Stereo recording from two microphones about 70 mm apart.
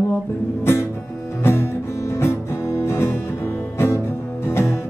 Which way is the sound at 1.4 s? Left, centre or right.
Left.